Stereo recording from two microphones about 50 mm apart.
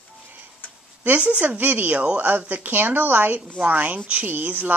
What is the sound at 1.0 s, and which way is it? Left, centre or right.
A woman's voice, right.